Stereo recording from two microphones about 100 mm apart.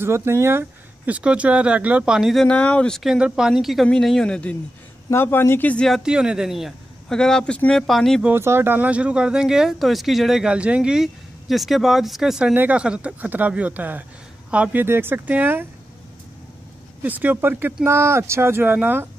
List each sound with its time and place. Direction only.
0.0 s speech: 25° right (ahead or behind); by 2.4 s 5° right (ahead or behind)
2.4 s speech: 15° left (ahead or behind)
3.0 s speech: 5° right (ahead or behind); by 4.6 s 10° left (ahead or behind)
5.1 s speech: 25° left (ahead or behind)
6.0 s speech: 10° right (ahead or behind)
8.3 s speech: 25° right (ahead or behind)
17.0 s speech: 15° right (ahead or behind)